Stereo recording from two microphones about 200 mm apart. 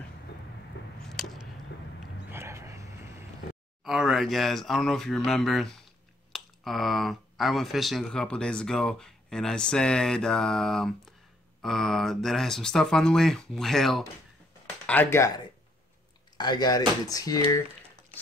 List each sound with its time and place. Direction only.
1.0 s a sound: centre (ahead or behind)
2.3 s vehicle: 15° right (ahead or behind)
3.8 s speech: centre (ahead or behind); by 17.6 s 20° left (ahead or behind)